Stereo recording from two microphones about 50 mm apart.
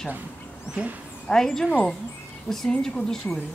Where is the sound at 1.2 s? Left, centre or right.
Centre.